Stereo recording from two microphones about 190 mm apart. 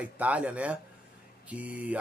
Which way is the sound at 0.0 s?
5° right (ahead or behind).